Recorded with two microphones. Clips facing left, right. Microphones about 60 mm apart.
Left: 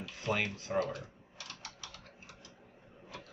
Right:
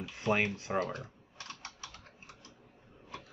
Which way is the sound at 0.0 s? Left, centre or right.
Right.